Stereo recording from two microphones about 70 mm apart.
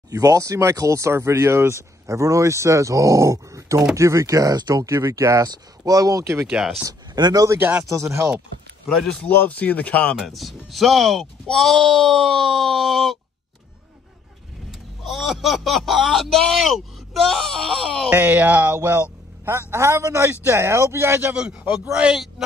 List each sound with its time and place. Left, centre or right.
0.1 s speech: right
2.0 s speech: right
5.4 s speech: right
6.4 s speech: centre
6.9 s speech: right
7.8 s speech: right
9.2 s speech: left
10.2 s speech: centre
14.7 s speech: centre
18.1 s a man's voice: right
21.9 s speech: centre